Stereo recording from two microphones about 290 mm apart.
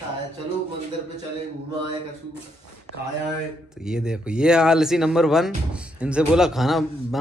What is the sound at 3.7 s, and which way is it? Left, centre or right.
Speech, centre.